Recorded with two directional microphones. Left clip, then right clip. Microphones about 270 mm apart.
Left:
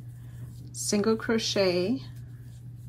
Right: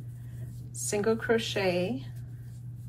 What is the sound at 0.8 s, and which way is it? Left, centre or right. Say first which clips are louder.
Speech: left 1 dB; centre.